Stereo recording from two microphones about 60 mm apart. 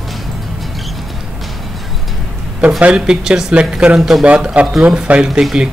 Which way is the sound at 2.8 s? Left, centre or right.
Centre.